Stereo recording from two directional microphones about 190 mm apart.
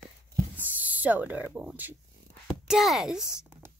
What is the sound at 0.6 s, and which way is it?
Speech, 10° right (ahead or behind).